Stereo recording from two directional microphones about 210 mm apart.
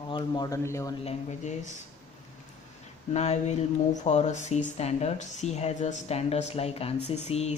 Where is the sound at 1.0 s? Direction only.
35° left (ahead or behind).